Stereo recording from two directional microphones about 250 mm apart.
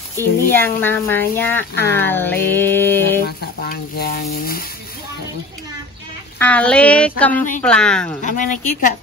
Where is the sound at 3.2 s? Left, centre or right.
Left.